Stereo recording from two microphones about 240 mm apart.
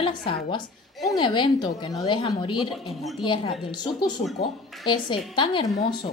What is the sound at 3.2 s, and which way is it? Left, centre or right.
A woman's voice, left.